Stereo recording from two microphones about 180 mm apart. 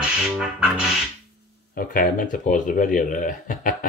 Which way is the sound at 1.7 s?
50° left (ahead or behind).